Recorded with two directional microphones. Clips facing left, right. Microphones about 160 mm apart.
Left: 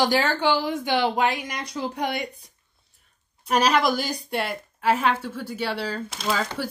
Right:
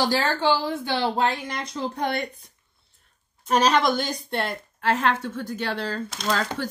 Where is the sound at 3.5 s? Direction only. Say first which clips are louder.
Right 1 dB; 5° left (ahead or behind).